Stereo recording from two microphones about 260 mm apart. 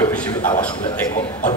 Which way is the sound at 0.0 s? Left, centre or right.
Centre.